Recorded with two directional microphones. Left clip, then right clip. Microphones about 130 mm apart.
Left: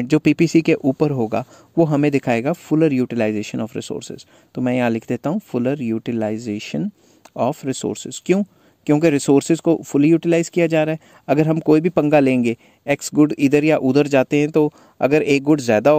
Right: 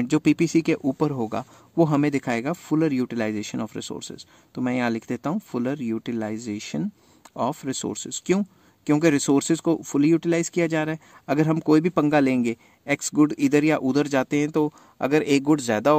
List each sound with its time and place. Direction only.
0.0 s speech: 35° left (ahead or behind)